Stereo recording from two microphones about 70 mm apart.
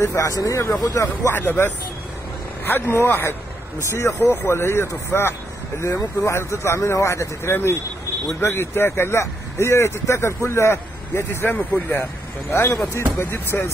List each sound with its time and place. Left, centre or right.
0.0 s speech: left
1.3 s speech: left
11.9 s speech: left